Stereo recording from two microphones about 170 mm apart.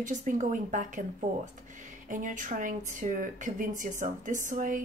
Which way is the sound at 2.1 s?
50° right (ahead or behind).